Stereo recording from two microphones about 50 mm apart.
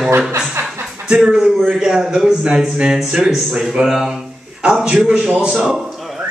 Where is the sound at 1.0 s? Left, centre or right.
Centre.